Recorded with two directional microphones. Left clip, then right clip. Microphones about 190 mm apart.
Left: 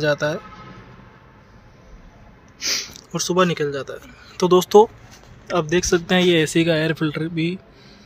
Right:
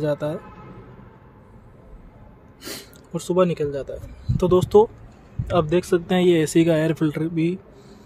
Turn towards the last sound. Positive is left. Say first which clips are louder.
# right 1 dB
turn(degrees=-10)  # may be behind; listen again after turning